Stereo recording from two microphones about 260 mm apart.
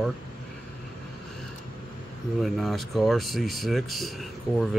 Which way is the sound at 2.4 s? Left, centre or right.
Centre.